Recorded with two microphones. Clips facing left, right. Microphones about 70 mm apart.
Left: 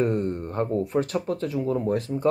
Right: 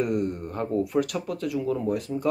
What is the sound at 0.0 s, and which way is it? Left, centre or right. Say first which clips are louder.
Speech: left 2 dB; left.